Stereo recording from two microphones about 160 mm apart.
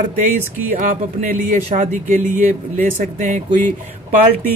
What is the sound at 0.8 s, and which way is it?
Speech, 60° right (ahead or behind).